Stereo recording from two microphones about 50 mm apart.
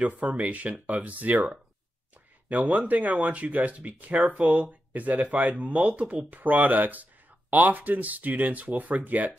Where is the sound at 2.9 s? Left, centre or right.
Right.